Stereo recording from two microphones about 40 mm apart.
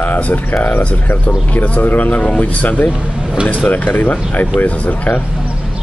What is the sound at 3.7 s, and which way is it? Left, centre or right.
Speech, left.